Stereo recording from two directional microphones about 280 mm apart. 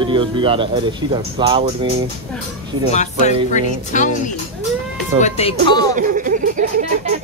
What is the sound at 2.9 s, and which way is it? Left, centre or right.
Speech, left.